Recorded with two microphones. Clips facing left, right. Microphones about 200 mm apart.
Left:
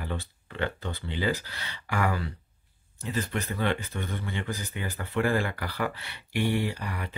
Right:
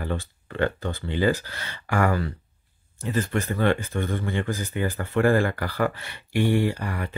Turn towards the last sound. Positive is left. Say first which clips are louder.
# right 6 dB
turn(degrees=-50)  # may be behind; listen again after turning